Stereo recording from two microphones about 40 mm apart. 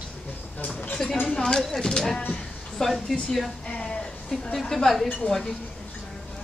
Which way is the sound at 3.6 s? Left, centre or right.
Left.